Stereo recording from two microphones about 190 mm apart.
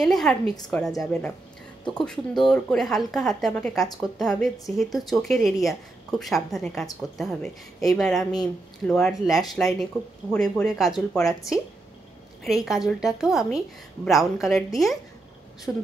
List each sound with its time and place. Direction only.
0.0 s a woman's voice: 5° left (ahead or behind)